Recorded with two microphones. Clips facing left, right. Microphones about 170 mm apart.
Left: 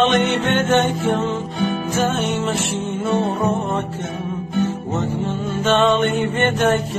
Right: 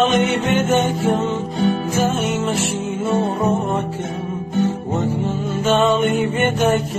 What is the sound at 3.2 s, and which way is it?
Music, 10° right (ahead or behind).